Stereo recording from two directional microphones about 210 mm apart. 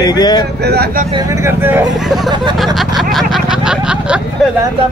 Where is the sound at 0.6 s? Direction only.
50° right (ahead or behind).